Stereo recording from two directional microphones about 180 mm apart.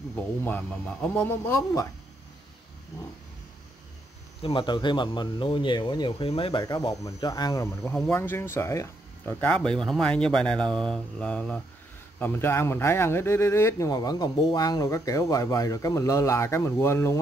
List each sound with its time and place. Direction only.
0.1 s speech: 10° left (ahead or behind)
4.4 s speech: 30° left (ahead or behind)
6.6 s speech: 20° left (ahead or behind)